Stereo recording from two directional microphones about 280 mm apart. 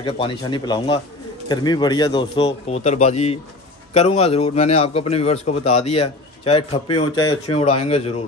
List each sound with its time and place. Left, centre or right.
0.0 s a man's voice: centre